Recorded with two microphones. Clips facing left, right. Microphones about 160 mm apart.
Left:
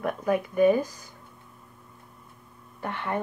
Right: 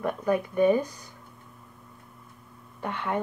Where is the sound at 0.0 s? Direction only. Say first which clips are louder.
Even; 5° left (ahead or behind).